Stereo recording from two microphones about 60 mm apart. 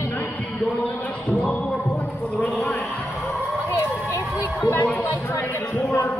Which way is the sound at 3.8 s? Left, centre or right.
Left.